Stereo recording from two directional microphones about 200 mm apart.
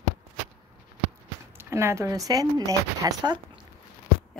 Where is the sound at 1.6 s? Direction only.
15° right (ahead or behind).